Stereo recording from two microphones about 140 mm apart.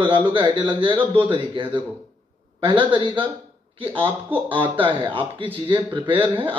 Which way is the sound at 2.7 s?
10° right (ahead or behind).